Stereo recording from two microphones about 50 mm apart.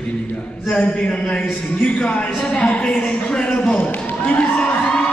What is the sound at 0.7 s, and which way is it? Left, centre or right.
Speech, left.